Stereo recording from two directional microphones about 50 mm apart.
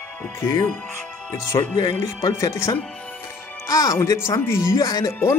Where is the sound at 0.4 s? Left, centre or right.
Left.